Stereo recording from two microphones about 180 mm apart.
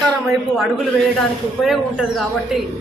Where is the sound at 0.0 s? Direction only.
Centre (ahead or behind).